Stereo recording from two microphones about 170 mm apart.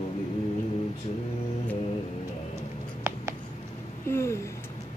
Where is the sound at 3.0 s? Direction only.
15° right (ahead or behind).